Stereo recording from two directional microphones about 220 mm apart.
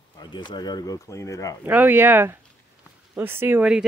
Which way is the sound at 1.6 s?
10° right (ahead or behind).